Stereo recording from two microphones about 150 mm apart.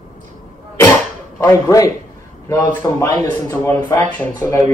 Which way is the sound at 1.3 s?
15° left (ahead or behind).